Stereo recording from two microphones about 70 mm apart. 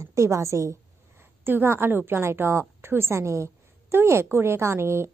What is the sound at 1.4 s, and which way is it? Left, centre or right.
A woman's voice, right.